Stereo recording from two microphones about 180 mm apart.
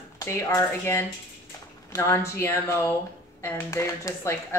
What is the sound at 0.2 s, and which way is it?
Speech, 15° left (ahead or behind).